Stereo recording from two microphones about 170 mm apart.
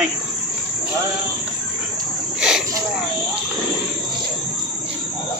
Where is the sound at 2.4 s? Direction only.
5° right (ahead or behind).